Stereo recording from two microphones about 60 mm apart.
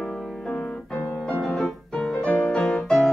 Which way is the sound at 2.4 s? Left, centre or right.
Centre.